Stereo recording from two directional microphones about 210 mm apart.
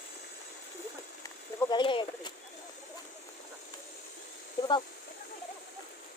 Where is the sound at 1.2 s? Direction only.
20° left (ahead or behind).